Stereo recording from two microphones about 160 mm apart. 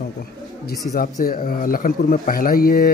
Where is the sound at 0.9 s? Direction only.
60° left (ahead or behind).